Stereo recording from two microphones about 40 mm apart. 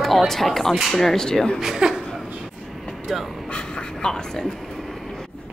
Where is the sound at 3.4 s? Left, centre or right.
Left.